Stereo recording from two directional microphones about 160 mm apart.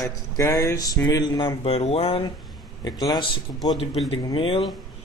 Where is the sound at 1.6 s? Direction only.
40° left (ahead or behind).